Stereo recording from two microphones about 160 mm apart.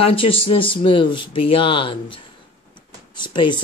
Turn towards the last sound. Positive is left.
turn(degrees=30)  # may be behind; listen again after turning